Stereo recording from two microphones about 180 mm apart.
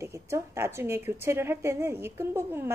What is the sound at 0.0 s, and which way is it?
A woman's voice, 15° right (ahead or behind).